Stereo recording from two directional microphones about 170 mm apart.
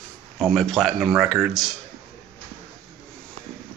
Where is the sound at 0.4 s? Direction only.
5° left (ahead or behind).